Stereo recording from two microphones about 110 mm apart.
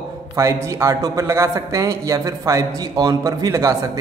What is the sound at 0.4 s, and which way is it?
Speech, 30° right (ahead or behind).